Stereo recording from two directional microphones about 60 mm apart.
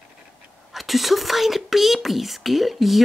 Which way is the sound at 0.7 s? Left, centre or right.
Centre.